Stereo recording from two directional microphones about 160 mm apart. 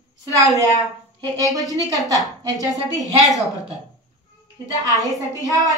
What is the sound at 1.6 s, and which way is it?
Speech, 20° left (ahead or behind).